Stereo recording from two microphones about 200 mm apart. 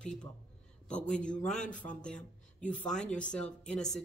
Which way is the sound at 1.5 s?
40° left (ahead or behind).